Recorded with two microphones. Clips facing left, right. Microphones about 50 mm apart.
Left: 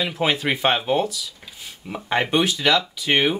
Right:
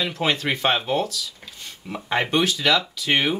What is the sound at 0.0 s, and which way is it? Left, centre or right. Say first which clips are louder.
Speech: left 1 dB; centre.